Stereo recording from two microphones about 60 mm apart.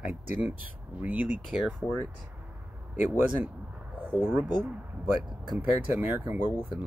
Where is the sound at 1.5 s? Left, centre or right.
Centre.